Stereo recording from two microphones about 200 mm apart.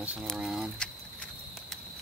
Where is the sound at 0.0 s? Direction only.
5° right (ahead or behind).